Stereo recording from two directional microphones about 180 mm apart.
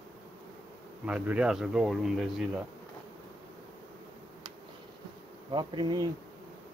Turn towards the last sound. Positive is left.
turn(degrees=-25)  # may be behind; listen again after turning